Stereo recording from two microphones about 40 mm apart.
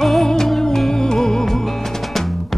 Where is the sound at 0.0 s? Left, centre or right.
Centre.